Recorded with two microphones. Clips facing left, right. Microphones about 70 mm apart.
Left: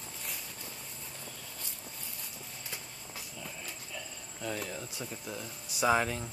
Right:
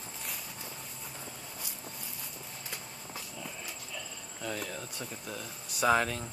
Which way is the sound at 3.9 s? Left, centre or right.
Centre.